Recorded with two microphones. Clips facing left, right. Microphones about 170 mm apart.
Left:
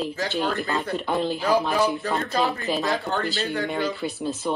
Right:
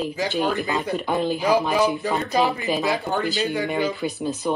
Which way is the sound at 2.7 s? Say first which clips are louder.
Right 2 dB; centre (ahead or behind).